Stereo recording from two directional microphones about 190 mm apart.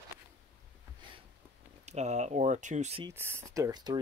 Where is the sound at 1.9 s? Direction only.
35° right (ahead or behind).